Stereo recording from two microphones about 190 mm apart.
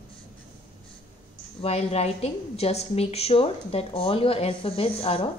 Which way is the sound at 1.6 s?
30° left (ahead or behind).